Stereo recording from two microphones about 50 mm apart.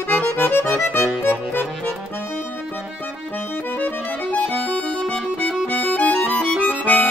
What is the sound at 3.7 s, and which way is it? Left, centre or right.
Accordion, left.